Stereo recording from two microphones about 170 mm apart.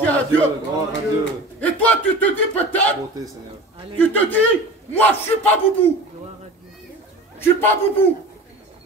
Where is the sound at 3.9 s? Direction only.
10° left (ahead or behind).